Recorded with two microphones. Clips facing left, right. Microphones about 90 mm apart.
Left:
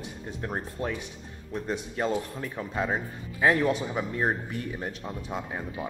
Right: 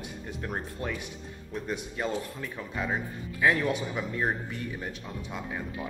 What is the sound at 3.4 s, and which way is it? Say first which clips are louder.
Speech: left 2 dB; 35° left (ahead or behind).